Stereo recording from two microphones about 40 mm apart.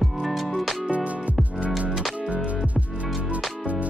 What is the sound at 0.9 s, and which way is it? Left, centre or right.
Music, right.